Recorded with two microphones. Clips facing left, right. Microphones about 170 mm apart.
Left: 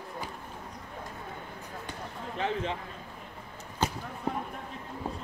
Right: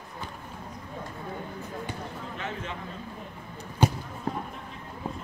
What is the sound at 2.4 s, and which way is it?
Speech, 30° left (ahead or behind).